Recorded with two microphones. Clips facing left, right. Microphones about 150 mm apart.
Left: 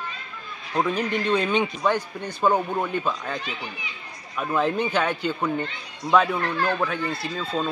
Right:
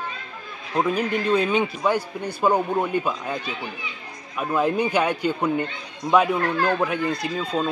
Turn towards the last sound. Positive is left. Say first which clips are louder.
# right 2 dB
turn(degrees=-15)  # may be behind; listen again after turning